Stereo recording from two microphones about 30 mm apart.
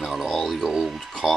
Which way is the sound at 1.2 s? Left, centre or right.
Centre.